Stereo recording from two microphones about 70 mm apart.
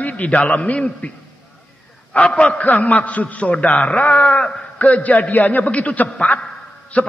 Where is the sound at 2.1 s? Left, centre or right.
Centre.